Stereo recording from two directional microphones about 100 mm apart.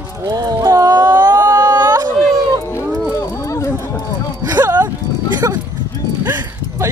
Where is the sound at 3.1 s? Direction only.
35° left (ahead or behind).